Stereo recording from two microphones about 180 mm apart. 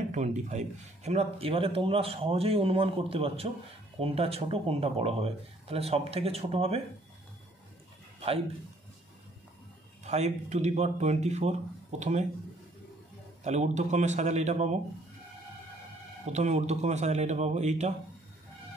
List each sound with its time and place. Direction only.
0.1 s a man's voice: 40° right (ahead or behind)
10.0 s a man's voice: 40° right (ahead or behind)
13.4 s a man's voice: 40° right (ahead or behind)
16.3 s a man's voice: 40° right (ahead or behind)